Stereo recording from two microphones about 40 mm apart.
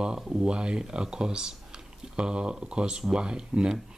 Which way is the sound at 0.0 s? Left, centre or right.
Right.